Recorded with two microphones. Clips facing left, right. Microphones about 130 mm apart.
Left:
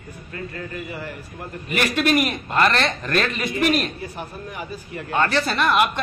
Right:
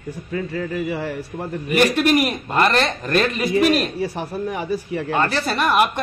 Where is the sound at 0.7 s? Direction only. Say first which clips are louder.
Right 8 dB; 90° right.